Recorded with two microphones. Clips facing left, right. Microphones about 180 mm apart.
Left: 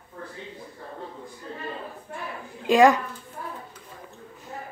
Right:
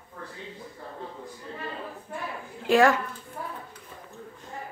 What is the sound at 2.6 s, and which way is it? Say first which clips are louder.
Speech: left 3 dB; 15° left (ahead or behind).